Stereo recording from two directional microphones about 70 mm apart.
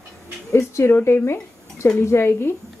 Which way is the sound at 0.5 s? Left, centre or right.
Left.